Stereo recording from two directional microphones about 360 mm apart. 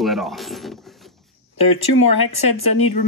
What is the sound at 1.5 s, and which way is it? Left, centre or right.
Speech, left.